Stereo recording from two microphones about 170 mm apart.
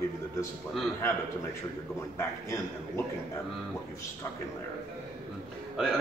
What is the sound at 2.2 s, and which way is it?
Speech, 15° left (ahead or behind).